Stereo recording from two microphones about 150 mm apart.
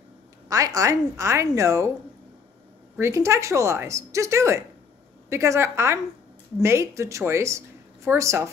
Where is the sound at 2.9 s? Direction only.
20° right (ahead or behind).